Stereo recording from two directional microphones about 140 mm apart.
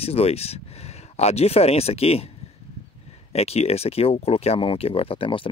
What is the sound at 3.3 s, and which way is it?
Speech, 45° left (ahead or behind).